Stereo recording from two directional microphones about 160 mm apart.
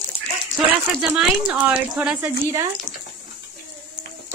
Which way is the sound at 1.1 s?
5° right (ahead or behind).